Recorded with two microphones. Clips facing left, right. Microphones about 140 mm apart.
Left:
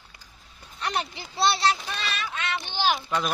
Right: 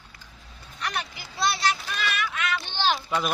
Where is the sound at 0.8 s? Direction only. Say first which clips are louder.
Left 3 dB; 30° left (ahead or behind).